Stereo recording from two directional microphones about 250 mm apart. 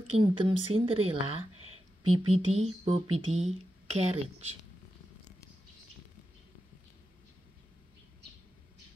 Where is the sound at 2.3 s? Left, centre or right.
Right.